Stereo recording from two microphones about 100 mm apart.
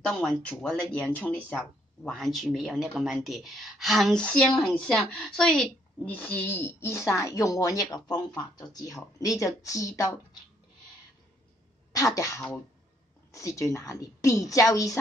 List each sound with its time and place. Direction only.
0.1 s a woman's voice: 5° left (ahead or behind)
1.6 s a woman's voice: centre (ahead or behind); by 10.0 s 35° left (ahead or behind)
11.9 s a woman's voice: 35° left (ahead or behind)